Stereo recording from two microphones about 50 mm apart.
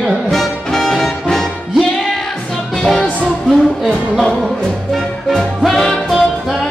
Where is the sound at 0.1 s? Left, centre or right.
Centre.